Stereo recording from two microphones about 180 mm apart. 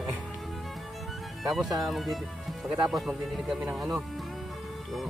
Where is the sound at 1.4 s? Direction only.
Centre (ahead or behind).